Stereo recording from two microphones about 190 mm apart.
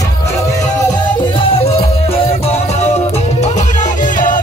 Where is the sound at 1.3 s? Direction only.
30° left (ahead or behind).